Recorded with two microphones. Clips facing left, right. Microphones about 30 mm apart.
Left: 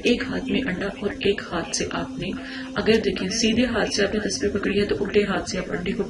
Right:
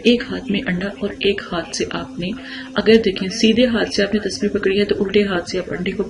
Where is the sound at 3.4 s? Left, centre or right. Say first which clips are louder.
Right 7 dB; right.